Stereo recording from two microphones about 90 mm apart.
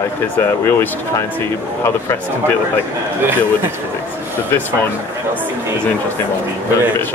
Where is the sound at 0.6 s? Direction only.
30° left (ahead or behind).